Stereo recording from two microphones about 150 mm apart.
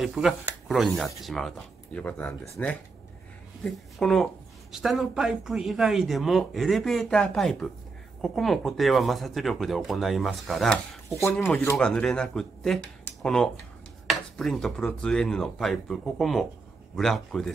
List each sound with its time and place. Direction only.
0.0 s speech: 5° right (ahead or behind)
4.0 s speech: 5° left (ahead or behind)
11.4 s speech: 15° left (ahead or behind)
11.7 s speech: 5° left (ahead or behind)